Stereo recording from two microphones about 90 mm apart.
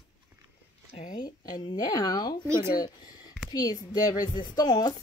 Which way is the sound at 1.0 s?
55° left (ahead or behind).